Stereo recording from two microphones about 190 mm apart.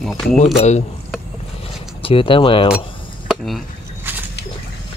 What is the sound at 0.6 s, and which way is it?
Speech, 35° left (ahead or behind).